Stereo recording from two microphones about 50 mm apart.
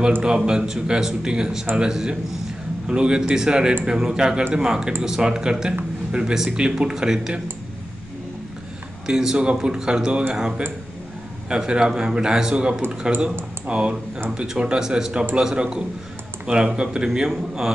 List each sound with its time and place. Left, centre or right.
0.5 s a man's voice: centre
9.0 s a man's voice: centre
11.4 s a man's voice: centre